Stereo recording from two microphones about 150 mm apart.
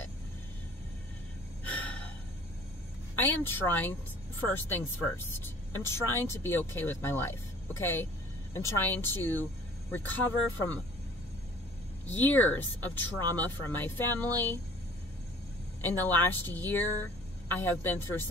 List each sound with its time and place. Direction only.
1.6 s gasp: 10° left (ahead or behind)
3.2 s a woman's voice: 15° left (ahead or behind)
12.1 s a woman's voice: 15° left (ahead or behind)
15.8 s a woman's voice: 15° left (ahead or behind)